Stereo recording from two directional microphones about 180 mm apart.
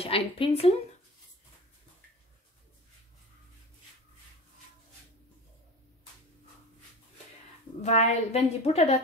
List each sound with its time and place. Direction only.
0.0 s a woman's voice: 30° left (ahead or behind)
7.8 s a woman's voice: 40° left (ahead or behind)